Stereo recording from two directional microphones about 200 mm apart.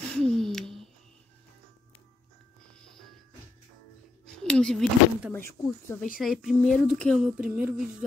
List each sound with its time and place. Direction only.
0.1 s a sound: 5° left (ahead or behind)
4.4 s speech: 5° left (ahead or behind)
6.2 s speech: centre (ahead or behind)